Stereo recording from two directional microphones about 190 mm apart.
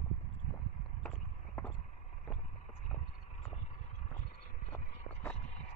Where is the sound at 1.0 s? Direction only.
10° left (ahead or behind).